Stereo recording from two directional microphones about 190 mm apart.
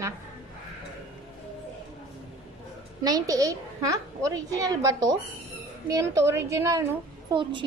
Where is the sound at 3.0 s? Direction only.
20° right (ahead or behind).